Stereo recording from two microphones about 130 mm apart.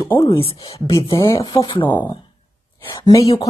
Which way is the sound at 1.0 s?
40° left (ahead or behind).